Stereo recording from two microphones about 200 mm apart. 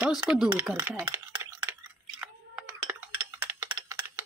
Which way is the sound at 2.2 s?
5° right (ahead or behind).